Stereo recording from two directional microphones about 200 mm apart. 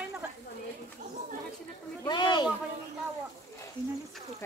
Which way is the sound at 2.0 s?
20° left (ahead or behind).